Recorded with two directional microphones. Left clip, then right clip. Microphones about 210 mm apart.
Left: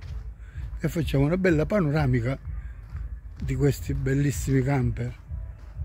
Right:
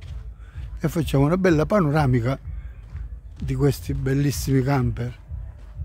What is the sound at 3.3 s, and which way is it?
Speech, 10° right (ahead or behind).